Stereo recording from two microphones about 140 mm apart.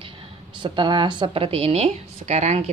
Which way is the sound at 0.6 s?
35° right (ahead or behind).